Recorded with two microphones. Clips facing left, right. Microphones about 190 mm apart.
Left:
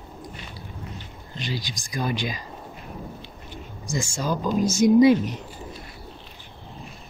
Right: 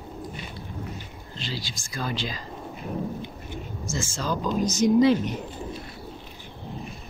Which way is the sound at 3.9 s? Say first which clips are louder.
Left 3 dB; 15° left (ahead or behind).